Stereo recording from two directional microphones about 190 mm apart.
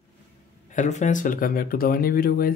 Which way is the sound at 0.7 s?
40° left (ahead or behind).